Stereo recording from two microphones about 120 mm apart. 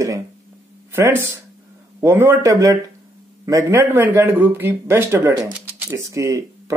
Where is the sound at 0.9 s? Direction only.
20° right (ahead or behind).